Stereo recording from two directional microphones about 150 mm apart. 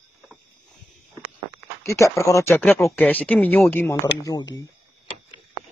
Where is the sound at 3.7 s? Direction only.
15° left (ahead or behind).